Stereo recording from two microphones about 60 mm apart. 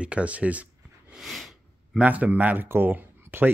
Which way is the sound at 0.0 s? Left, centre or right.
Centre.